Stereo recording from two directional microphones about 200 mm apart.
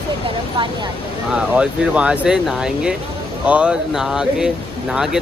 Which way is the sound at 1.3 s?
5° right (ahead or behind).